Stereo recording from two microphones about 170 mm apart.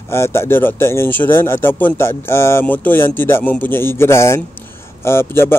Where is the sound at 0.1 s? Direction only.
15° left (ahead or behind).